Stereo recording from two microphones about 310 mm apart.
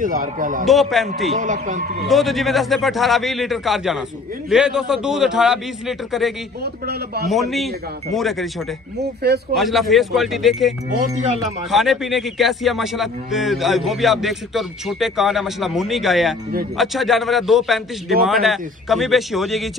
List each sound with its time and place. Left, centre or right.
0.0 s a man's voice: right
0.7 s a man's voice: centre
1.3 s a man's voice: right
2.0 s a man's voice: centre
6.6 s a man's voice: right
7.2 s a man's voice: centre
9.6 s a man's voice: centre
11.7 s a man's voice: centre